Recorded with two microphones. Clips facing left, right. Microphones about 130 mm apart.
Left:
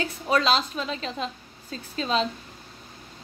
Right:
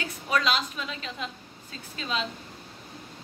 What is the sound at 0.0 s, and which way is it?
A woman's voice, 30° left (ahead or behind).